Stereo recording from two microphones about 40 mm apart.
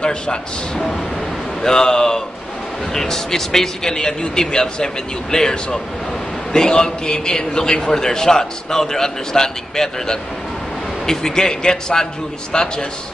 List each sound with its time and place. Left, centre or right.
0.0 s a man's voice: left
1.6 s a man's voice: centre